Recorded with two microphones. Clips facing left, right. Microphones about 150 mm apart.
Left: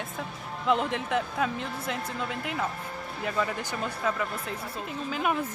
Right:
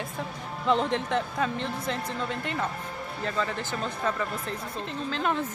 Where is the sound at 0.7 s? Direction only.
5° left (ahead or behind).